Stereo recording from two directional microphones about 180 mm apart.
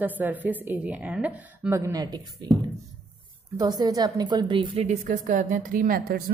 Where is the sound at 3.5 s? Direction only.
20° right (ahead or behind); by 6.2 s 55° right (ahead or behind).